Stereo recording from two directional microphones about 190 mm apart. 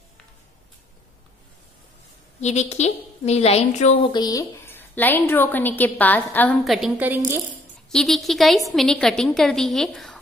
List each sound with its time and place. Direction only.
2.4 s a woman's voice: 35° left (ahead or behind)
4.0 s a woman's voice: 20° left (ahead or behind); by 7.2 s 5° right (ahead or behind)
7.2 s speech: 15° right (ahead or behind)
7.9 s a woman's voice: centre (ahead or behind)